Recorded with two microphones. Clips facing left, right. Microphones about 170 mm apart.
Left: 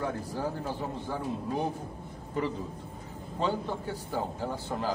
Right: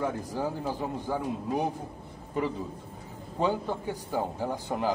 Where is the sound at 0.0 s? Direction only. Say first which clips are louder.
Right 2 dB; 15° right (ahead or behind).